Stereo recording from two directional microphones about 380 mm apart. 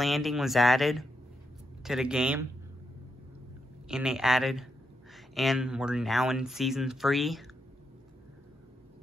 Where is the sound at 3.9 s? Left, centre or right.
Centre.